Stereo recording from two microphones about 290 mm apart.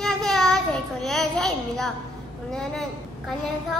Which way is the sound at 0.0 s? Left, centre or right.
Centre.